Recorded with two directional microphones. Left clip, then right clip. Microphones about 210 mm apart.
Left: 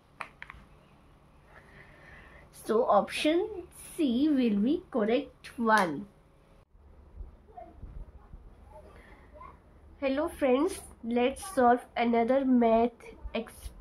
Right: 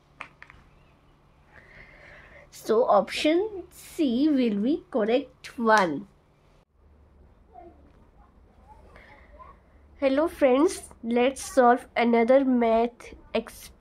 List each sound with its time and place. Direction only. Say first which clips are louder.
0.2 s a sound: left 1 dB; 5° left (ahead or behind)
2.6 s a woman's voice: right 4 dB; 45° right (ahead or behind)
9.9 s a woman's voice: right 7 dB; 55° right (ahead or behind)